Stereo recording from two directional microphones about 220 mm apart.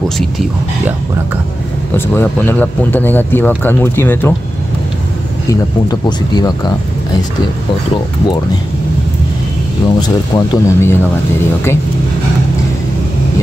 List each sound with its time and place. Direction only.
2.0 s speech: 10° left (ahead or behind)
5.5 s speech: 15° left (ahead or behind)
9.9 s speech: 20° left (ahead or behind)